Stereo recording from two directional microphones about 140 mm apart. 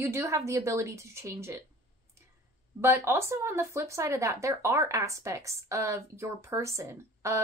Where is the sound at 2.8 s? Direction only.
15° right (ahead or behind).